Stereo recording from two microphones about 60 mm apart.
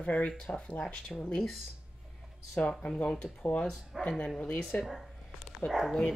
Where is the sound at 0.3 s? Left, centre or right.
Centre.